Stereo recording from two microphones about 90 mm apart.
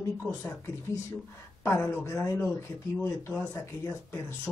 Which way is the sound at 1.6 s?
25° left (ahead or behind).